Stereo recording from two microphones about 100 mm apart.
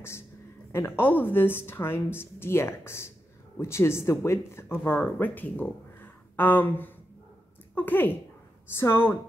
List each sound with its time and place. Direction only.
0.7 s speech: 25° left (ahead or behind)